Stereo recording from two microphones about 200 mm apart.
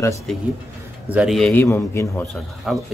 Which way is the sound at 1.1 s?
Centre (ahead or behind).